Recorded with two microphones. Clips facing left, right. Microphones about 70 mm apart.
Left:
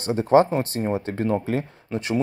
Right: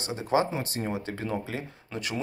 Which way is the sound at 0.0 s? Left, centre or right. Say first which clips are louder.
Left 9 dB; left.